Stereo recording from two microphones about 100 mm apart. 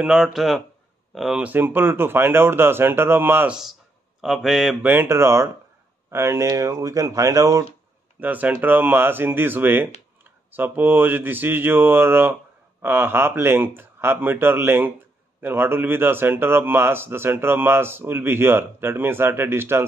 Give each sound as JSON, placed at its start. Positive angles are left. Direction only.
{"t": 0.0, "sound": "speech", "side_deg": -5}
{"t": 1.4, "sound": "speech", "side_deg": -20}
{"t": 3.4, "sound": "speech", "side_deg": -5}
{"t": 4.8, "sound": "speech", "side_deg": -25}
{"t": 8.2, "sound": "speech", "side_deg": -15}